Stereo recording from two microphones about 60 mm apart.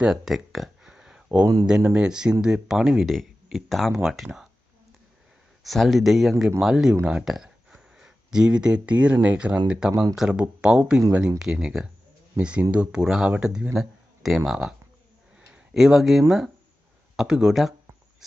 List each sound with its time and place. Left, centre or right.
0.0 s a sound: centre
1.7 s speech: centre
3.6 s speech: centre
5.6 s speech: centre
7.2 s a sound: centre
8.5 s speech: centre